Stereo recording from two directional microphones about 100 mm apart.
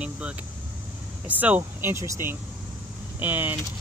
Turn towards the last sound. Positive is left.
turn(degrees=-20)  # may be behind; listen again after turning